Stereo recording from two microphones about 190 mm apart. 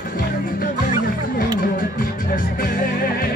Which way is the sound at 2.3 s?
50° left (ahead or behind).